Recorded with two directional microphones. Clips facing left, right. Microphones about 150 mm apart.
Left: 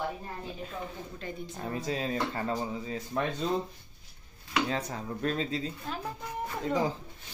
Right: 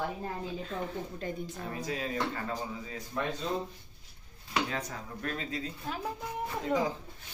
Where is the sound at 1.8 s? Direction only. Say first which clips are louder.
Left 2 dB; 30° left (ahead or behind).